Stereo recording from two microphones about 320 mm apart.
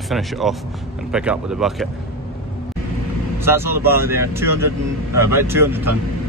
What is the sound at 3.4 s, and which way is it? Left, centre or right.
Speech, centre.